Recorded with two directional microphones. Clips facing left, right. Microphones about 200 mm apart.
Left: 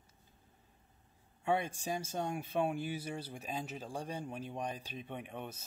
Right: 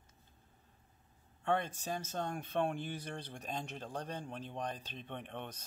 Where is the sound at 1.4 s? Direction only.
10° left (ahead or behind).